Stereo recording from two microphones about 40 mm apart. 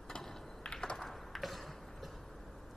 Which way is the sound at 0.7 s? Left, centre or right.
Left.